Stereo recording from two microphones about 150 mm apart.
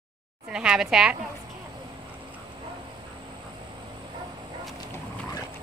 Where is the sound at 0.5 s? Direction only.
5° right (ahead or behind).